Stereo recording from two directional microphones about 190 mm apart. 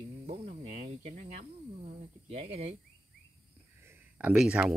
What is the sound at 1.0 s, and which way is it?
Speech, 35° right (ahead or behind).